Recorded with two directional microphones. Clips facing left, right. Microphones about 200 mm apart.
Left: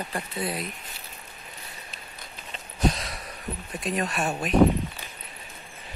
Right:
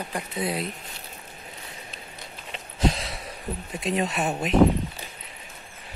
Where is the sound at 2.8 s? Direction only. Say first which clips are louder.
Right 1 dB; 25° right (ahead or behind).